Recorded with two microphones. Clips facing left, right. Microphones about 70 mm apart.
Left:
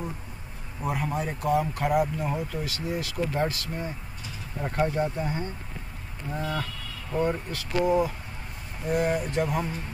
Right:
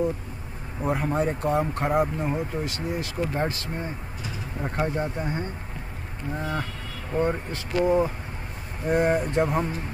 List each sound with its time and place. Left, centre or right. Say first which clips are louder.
0.8 s speech: right 4 dB; right
6.3 s speech: even; right